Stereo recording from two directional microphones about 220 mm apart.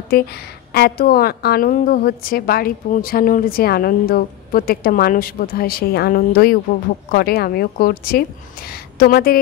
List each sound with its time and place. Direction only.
0.1 s a woman's voice: 45° left (ahead or behind)